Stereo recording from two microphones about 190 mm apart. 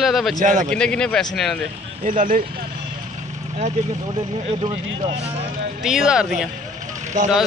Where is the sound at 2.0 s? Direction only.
45° right (ahead or behind).